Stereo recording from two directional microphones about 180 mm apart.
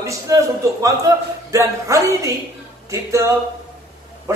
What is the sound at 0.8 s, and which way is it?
A man's voice, 20° right (ahead or behind).